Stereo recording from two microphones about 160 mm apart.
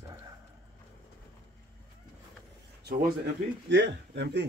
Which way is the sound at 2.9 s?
90° right.